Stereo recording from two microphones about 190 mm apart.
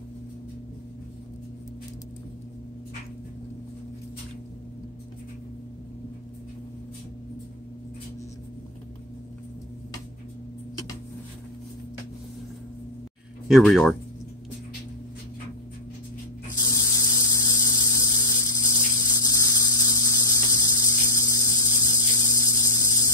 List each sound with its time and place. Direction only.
13.5 s speech: centre (ahead or behind)
16.6 s mains hum: 20° left (ahead or behind)